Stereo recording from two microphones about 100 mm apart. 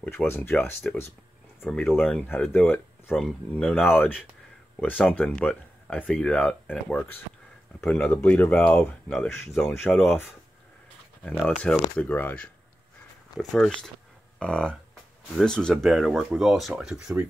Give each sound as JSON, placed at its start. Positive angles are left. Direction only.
{"t": 0.1, "sound": "speech", "side_deg": 20}
{"t": 1.7, "sound": "speech", "side_deg": 5}
{"t": 2.2, "sound": "speech", "side_deg": 20}
{"t": 3.1, "sound": "speech", "side_deg": 5}
{"t": 11.2, "sound": "speech", "side_deg": 20}
{"t": 13.4, "sound": "speech", "side_deg": 0}